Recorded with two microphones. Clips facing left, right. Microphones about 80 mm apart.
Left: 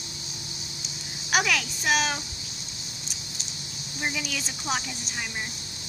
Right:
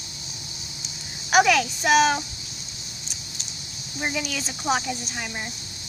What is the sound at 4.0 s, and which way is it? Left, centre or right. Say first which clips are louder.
Speech: right 3 dB; centre.